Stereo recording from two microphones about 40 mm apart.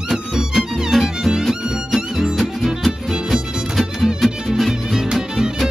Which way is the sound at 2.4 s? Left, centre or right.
Centre.